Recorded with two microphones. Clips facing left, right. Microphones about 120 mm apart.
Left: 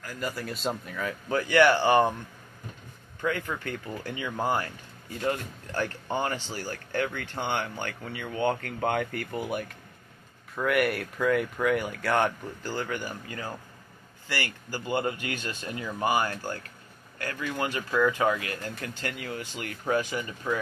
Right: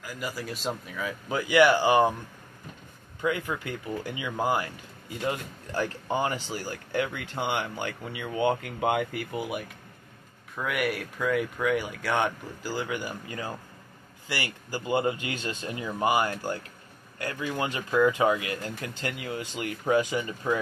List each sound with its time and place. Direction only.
0.0 s speech: 5° right (ahead or behind)
3.2 s speech: 15° right (ahead or behind)